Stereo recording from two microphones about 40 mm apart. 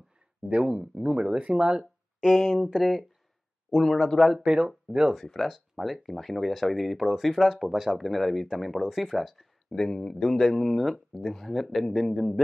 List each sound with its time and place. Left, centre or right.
0.5 s speech: right
2.8 s speech: centre
4.4 s speech: right
5.1 s speech: centre
8.1 s speech: centre
9.7 s speech: centre